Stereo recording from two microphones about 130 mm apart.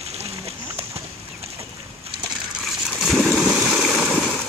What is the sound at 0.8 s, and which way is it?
Horse, 50° right (ahead or behind).